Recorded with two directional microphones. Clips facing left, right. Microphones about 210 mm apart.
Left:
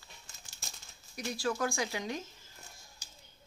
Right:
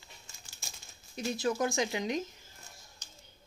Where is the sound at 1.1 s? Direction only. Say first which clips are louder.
Right 3 dB; 25° right (ahead or behind).